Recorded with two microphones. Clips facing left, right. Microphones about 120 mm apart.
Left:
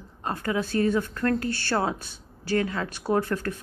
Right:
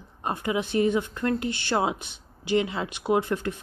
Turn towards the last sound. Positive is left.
turn(degrees=-15)  # may be behind; listen again after turning